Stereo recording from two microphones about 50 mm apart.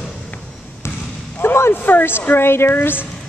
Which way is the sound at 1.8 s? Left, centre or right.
Left.